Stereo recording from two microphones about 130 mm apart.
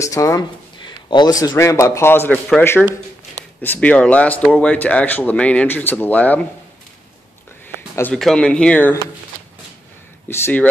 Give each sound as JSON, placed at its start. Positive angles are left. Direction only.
{"t": 0.0, "sound": "a man's voice", "side_deg": 25}
{"t": 3.6, "sound": "speech", "side_deg": 15}
{"t": 8.1, "sound": "speech", "side_deg": 5}
{"t": 10.3, "sound": "speech", "side_deg": 15}